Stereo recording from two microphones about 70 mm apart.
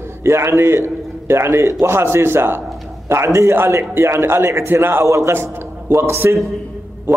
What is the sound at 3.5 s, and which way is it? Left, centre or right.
A man's voice, right.